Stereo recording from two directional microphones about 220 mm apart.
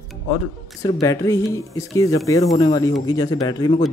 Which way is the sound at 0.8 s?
15° left (ahead or behind).